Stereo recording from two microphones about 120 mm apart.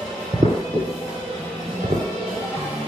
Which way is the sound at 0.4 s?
65° right (ahead or behind).